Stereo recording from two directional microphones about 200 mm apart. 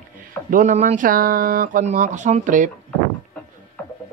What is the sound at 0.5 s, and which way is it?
Speech, 40° right (ahead or behind).